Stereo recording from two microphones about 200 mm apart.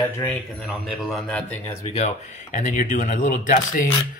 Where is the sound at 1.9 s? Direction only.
35° left (ahead or behind).